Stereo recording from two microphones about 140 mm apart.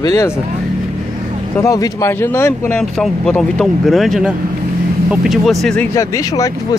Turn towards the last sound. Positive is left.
turn(degrees=25)  # may be behind; listen again after turning